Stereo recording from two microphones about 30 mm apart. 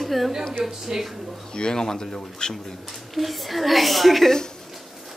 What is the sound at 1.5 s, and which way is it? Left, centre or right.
Speech, left.